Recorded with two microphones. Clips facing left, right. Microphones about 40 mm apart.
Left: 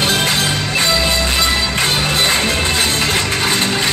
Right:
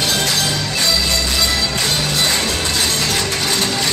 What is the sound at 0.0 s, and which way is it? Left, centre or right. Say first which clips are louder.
Music: left 3 dB; left.